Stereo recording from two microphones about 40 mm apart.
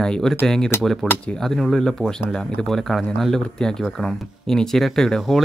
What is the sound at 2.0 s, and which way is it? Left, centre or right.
Speech, centre.